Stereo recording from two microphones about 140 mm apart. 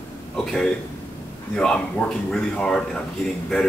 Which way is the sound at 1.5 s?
5° left (ahead or behind).